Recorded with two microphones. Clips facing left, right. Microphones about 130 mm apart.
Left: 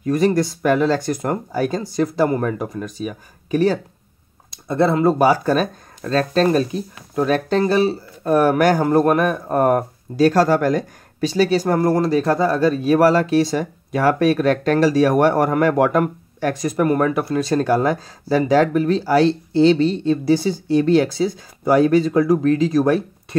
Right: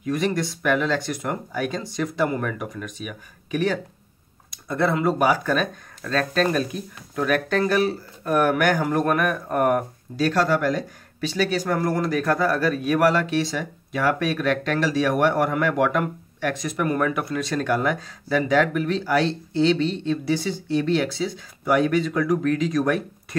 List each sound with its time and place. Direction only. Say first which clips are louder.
0.0 s speech: left 7 dB; 40° left (ahead or behind)